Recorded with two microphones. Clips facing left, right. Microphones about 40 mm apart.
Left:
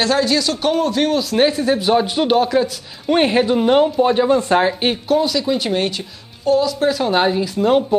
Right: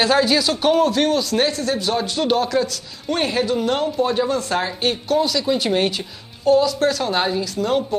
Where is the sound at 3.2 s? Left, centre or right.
Left.